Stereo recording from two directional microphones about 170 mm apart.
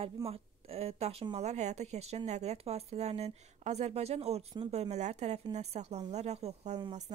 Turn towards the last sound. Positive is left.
turn(degrees=-40)  # may be behind; listen again after turning